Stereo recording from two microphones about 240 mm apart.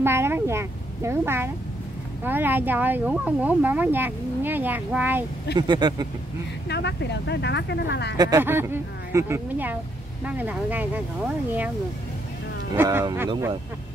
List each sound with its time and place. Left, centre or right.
0.0 s speech: centre
6.7 s speech: left
8.2 s speech: centre
12.7 s speech: centre